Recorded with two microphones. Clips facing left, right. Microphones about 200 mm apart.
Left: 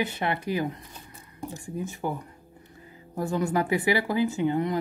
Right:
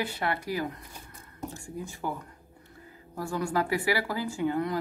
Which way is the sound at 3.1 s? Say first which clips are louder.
Left 3 dB; 20° left (ahead or behind).